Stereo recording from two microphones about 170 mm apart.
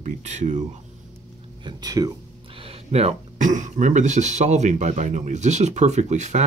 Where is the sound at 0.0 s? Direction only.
45° right (ahead or behind).